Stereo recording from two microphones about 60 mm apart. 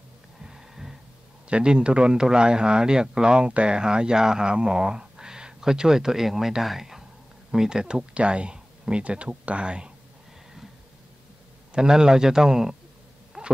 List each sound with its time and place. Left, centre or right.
0.4 s a sound: centre
1.5 s speech: centre
11.7 s speech: centre
13.3 s owl: centre